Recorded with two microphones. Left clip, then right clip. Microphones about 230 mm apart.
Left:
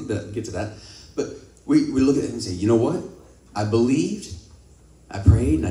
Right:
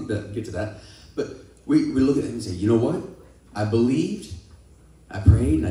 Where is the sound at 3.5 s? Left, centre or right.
Centre.